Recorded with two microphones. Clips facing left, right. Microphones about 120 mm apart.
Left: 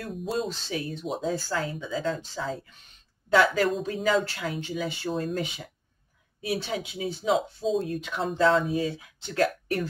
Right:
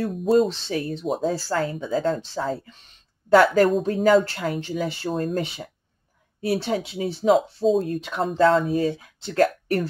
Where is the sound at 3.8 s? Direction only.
45° right (ahead or behind).